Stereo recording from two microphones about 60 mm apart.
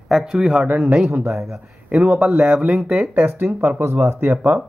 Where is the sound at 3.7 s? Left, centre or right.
Right.